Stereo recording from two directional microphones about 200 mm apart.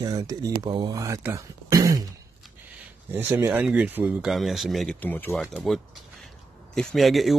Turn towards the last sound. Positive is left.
turn(degrees=0)  # may be behind; listen again after turning